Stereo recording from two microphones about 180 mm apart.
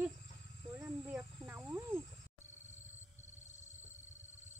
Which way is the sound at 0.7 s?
10° right (ahead or behind).